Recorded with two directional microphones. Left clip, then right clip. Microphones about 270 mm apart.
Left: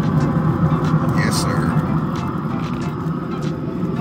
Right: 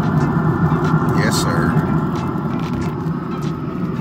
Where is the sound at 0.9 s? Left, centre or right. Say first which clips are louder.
Right 2 dB; left.